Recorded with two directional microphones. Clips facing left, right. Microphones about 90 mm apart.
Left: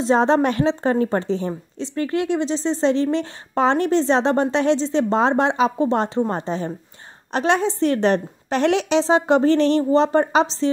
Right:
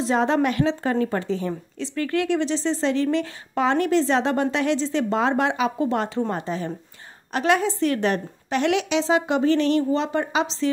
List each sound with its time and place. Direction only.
0.0 s a woman's voice: 30° left (ahead or behind)